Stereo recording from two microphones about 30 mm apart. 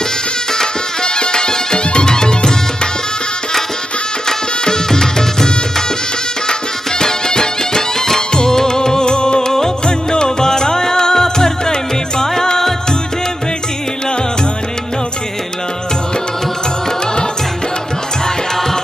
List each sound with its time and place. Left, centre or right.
0.5 s music: left
4.3 s music: centre
7.0 s music: left